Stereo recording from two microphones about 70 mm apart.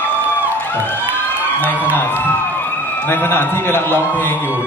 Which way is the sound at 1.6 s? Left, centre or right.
Left.